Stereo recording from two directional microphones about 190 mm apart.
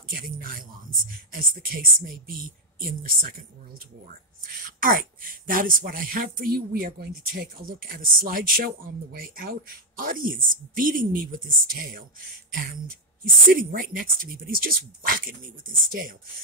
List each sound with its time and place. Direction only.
0.1 s speech: 50° right (ahead or behind)
4.5 s speech: 50° right (ahead or behind)